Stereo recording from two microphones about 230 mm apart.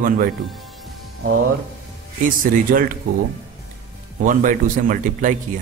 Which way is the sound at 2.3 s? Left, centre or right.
Right.